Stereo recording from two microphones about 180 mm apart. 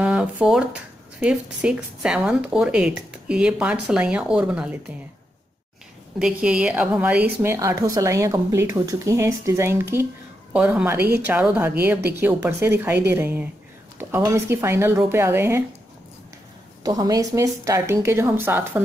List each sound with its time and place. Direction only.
0.0 s a sound: 5° right (ahead or behind)
1.2 s speech: 5° right (ahead or behind)
6.1 s a woman's voice: 5° right (ahead or behind)
16.8 s a woman's voice: 20° right (ahead or behind)